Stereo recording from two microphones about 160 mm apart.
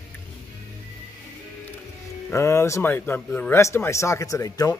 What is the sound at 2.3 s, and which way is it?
Speech, 20° left (ahead or behind).